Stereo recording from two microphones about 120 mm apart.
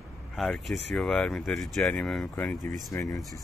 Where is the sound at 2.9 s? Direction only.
25° left (ahead or behind).